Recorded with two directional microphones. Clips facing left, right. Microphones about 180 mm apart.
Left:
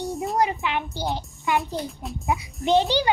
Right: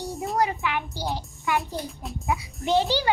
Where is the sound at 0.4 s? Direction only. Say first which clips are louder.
Left 1 dB; 20° left (ahead or behind).